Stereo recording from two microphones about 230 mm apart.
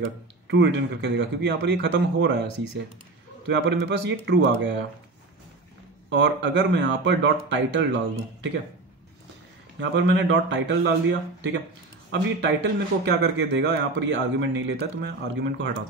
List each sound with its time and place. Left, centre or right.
0.5 s speech: right
6.0 s speech: right
9.8 s speech: right